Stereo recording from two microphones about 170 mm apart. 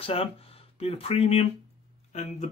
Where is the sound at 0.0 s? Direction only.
35° left (ahead or behind).